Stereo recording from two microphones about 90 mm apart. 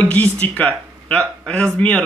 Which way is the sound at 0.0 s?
15° left (ahead or behind).